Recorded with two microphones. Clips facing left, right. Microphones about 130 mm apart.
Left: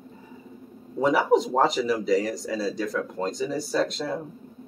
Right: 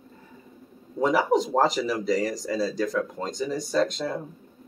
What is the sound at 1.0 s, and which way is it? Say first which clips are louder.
Speech: left 1 dB; centre (ahead or behind).